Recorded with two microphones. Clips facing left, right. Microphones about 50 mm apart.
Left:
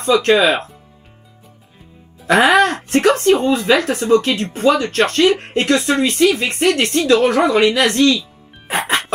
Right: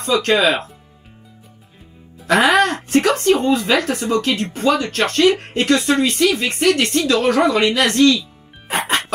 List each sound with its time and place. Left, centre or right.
0.0 s speech: left
2.5 s speech: left